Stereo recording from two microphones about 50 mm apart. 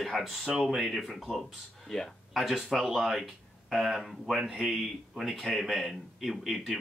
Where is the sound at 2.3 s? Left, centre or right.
Centre.